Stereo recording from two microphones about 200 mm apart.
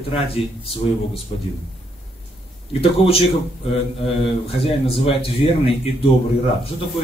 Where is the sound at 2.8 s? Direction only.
30° left (ahead or behind).